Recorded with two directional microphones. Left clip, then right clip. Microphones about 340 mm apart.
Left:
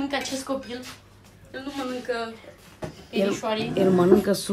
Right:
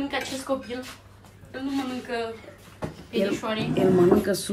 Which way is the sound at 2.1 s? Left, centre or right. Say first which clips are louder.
Left 2 dB; centre.